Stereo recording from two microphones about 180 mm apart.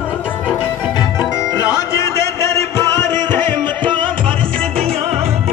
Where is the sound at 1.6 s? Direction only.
20° left (ahead or behind).